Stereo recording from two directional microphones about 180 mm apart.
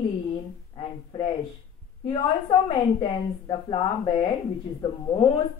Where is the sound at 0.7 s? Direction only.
25° left (ahead or behind).